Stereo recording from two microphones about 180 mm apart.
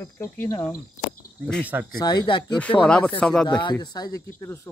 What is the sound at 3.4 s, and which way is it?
Speech, 25° left (ahead or behind).